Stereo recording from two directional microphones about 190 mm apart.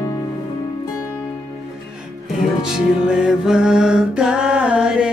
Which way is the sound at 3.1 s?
Centre (ahead or behind).